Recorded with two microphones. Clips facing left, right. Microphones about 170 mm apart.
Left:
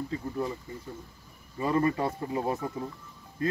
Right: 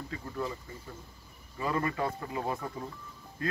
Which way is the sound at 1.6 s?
30° left (ahead or behind).